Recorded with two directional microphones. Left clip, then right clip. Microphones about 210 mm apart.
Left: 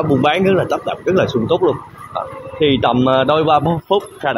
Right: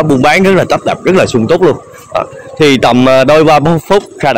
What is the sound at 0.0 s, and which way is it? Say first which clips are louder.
Speech: right 7 dB; 45° right (ahead or behind).